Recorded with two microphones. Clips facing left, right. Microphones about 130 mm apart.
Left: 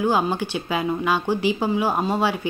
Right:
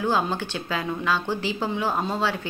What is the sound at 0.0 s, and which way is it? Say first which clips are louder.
Speech: left 3 dB; 15° left (ahead or behind).